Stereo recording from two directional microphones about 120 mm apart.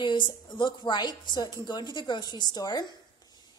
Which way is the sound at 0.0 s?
40° left (ahead or behind).